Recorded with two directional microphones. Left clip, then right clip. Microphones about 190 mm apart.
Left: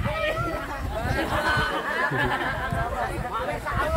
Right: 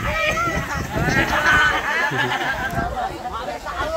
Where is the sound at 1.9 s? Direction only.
30° left (ahead or behind).